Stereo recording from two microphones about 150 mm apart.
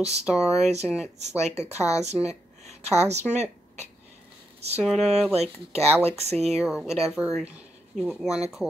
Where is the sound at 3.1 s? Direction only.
50° right (ahead or behind).